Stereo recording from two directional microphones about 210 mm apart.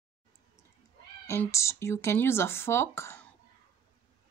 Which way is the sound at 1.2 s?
10° left (ahead or behind).